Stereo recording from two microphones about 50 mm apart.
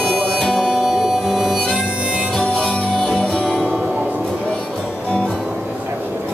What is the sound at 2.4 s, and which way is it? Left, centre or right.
Music, centre.